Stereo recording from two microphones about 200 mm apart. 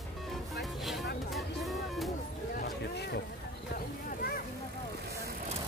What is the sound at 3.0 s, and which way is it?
Speech, 55° left (ahead or behind).